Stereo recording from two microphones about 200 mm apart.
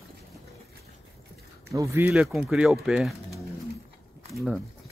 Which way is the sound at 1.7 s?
15° right (ahead or behind).